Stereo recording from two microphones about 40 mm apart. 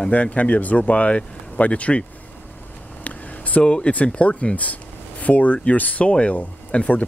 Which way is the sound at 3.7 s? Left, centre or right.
Left.